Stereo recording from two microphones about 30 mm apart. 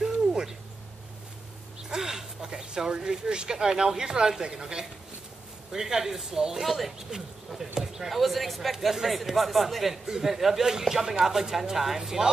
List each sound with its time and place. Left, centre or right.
0.0 s a sound: centre
2.0 s a sound: centre
2.9 s speech: right
6.5 s speech: centre
7.0 s speech: centre
8.1 s speech: centre
10.0 s speech: centre